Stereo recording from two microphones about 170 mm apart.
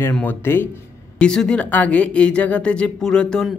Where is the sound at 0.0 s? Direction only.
10° left (ahead or behind).